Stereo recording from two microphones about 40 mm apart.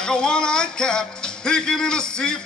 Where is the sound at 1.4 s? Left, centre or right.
Centre.